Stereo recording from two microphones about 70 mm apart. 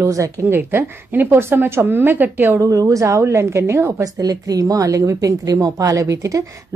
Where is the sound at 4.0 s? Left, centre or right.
Right.